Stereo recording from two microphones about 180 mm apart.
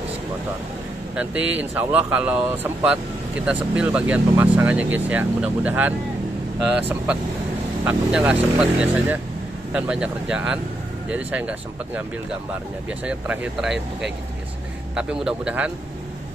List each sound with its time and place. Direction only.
1.1 s speech: 5° right (ahead or behind)